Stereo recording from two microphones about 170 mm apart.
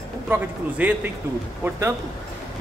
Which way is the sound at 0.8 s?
10° right (ahead or behind).